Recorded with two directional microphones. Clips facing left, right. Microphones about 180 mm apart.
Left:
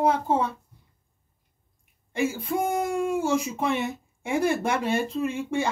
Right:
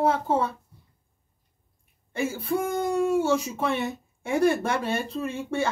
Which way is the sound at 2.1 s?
15° left (ahead or behind).